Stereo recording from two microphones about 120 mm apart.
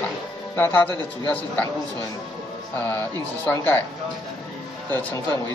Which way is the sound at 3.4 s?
15° left (ahead or behind).